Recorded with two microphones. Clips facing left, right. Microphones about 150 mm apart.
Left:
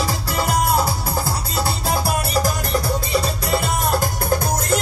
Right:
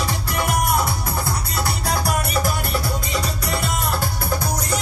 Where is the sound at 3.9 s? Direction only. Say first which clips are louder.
Left 4 dB; 45° left (ahead or behind).